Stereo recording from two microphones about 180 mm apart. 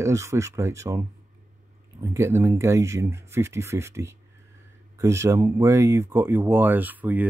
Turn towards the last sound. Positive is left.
turn(degrees=-10)  # may be behind; listen again after turning